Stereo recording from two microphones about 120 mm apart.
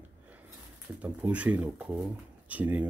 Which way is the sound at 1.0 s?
10° right (ahead or behind).